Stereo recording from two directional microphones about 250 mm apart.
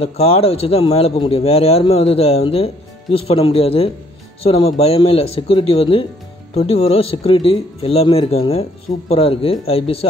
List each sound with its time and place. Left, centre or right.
0.0 s a man's voice: left